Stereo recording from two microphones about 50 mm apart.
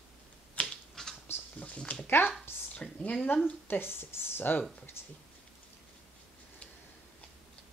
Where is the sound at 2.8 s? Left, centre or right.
Left.